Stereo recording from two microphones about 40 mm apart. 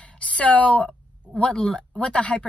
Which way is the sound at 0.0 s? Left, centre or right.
Left.